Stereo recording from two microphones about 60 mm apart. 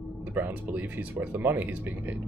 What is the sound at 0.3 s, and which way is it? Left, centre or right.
Speech, right.